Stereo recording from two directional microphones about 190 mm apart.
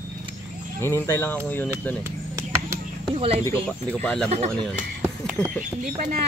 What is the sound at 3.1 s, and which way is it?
Speech, 30° right (ahead or behind).